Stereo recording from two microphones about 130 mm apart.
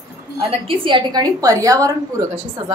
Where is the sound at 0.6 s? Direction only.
40° right (ahead or behind).